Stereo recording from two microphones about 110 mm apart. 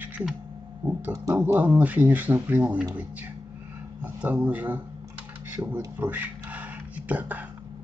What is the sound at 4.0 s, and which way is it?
Speech, 10° right (ahead or behind).